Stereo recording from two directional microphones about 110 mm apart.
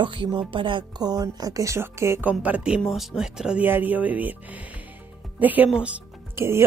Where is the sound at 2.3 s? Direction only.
15° right (ahead or behind).